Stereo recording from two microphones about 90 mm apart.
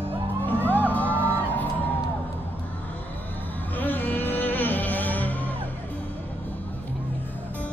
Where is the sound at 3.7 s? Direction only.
20° left (ahead or behind).